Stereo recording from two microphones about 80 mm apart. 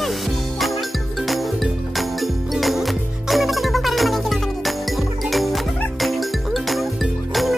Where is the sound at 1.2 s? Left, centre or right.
Centre.